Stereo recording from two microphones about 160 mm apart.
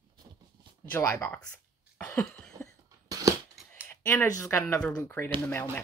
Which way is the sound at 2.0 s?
5° left (ahead or behind).